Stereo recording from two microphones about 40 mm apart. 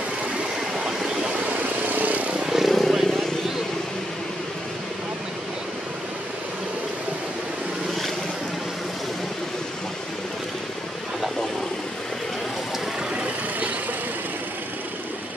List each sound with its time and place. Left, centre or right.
0.8 s a sound: centre
1.4 s vehicle: right
2.4 s vehicle: centre
13.1 s vehicle: right